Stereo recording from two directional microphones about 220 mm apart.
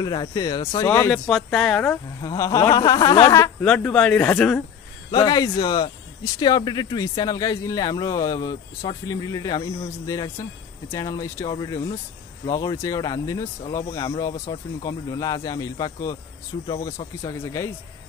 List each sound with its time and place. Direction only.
0.0 s speech: 20° left (ahead or behind)
5.1 s speech: 15° left (ahead or behind)